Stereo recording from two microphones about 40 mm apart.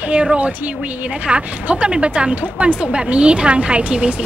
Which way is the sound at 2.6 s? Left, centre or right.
Right.